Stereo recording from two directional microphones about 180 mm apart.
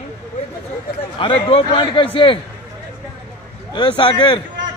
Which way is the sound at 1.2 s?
30° left (ahead or behind).